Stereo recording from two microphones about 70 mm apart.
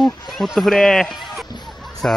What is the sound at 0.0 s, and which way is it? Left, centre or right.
Speech, centre.